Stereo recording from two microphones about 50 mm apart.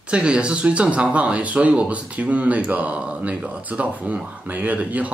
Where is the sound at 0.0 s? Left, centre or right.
Right.